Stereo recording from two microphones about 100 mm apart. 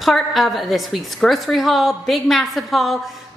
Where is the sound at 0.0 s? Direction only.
Centre (ahead or behind).